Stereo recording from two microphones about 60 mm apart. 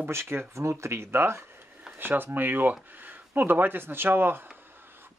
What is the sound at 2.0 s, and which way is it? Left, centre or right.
Speech, right.